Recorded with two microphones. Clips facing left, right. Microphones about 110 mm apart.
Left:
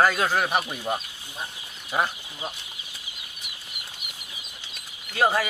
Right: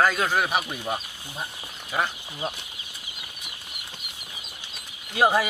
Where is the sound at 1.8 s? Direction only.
10° left (ahead or behind).